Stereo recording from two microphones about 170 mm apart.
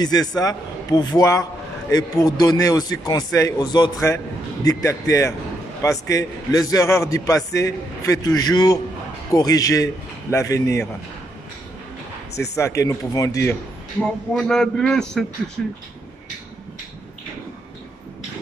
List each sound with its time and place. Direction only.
0.0 s a man's voice: 25° left (ahead or behind)
12.5 s speech: 20° left (ahead or behind)
14.0 s a man's voice: 5° left (ahead or behind)